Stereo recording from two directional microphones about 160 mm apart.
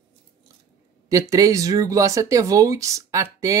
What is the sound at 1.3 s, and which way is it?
Speech, 20° right (ahead or behind).